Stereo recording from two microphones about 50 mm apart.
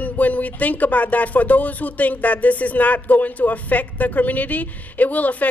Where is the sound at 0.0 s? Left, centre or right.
Left.